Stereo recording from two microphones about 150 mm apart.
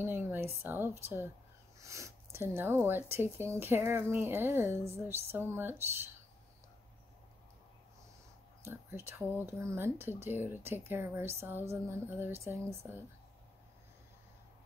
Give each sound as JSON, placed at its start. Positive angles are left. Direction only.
{"t": 0.0, "sound": "a sound", "side_deg": -15}
{"t": 0.6, "sound": "speech", "side_deg": -15}
{"t": 8.6, "sound": "speech", "side_deg": -15}